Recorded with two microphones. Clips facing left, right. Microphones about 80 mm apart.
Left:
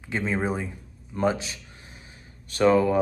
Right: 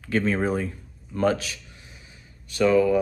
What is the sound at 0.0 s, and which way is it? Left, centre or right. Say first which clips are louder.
Speech: right 3 dB; centre.